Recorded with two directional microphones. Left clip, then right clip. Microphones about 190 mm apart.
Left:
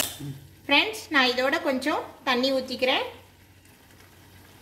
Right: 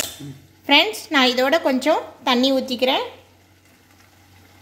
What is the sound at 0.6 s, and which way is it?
A woman's voice, 55° right (ahead or behind).